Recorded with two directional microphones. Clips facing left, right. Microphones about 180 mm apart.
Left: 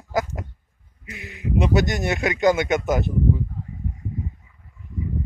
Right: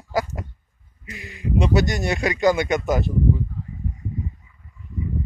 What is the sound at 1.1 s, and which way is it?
Speech, 70° left (ahead or behind).